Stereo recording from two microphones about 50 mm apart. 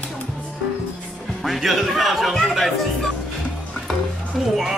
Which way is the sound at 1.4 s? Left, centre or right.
Centre.